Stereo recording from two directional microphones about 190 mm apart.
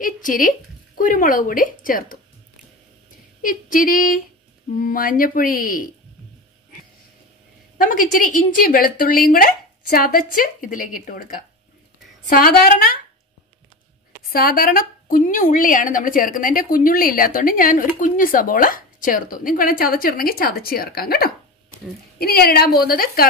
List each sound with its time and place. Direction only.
0.0 s a woman's voice: 45° left (ahead or behind)
3.4 s a woman's voice: 45° left (ahead or behind)
7.7 s a woman's voice: 45° left (ahead or behind)
14.3 s a woman's voice: 50° left (ahead or behind)